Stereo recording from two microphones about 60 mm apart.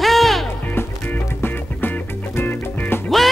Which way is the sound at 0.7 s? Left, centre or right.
Left.